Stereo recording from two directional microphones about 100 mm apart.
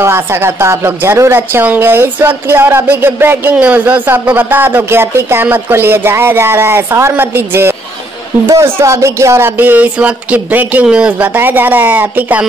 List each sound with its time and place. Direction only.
0.0 s speech: 25° right (ahead or behind)